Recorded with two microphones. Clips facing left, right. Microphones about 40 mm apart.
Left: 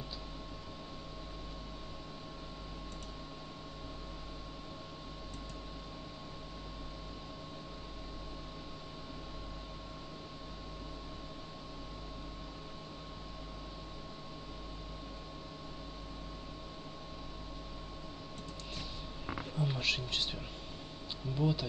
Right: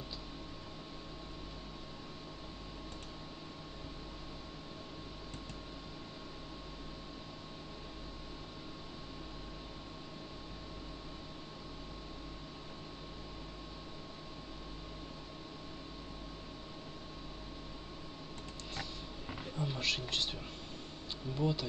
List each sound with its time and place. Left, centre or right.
19.5 s speech: centre
21.4 s speech: centre